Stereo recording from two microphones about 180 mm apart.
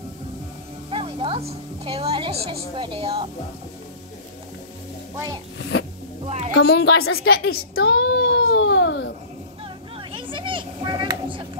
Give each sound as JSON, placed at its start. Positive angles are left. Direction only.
{"t": 0.8, "sound": "music", "side_deg": -30}
{"t": 6.2, "sound": "speech", "side_deg": -35}
{"t": 6.8, "sound": "baby cry", "side_deg": 65}
{"t": 9.9, "sound": "a sound", "side_deg": -30}